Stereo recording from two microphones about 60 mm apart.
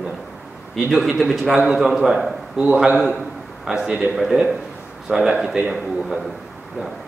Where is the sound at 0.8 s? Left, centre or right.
Centre.